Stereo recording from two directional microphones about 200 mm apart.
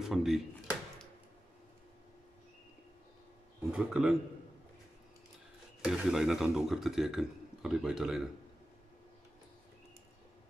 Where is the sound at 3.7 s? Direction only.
5° right (ahead or behind).